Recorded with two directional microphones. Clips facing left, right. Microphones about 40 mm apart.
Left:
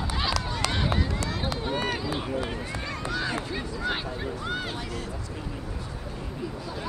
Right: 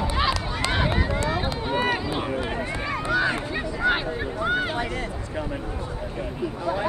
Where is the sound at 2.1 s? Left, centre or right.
Right.